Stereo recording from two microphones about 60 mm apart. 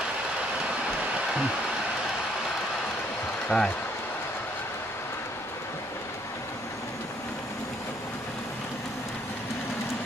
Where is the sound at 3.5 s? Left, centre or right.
Left.